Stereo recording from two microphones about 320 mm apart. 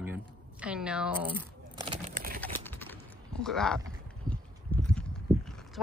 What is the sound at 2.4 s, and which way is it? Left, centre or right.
Typing, centre.